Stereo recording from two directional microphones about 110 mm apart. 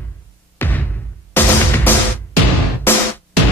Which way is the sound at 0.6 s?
15° left (ahead or behind).